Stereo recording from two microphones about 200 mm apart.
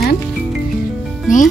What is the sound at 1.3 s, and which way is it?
Speech, 40° left (ahead or behind).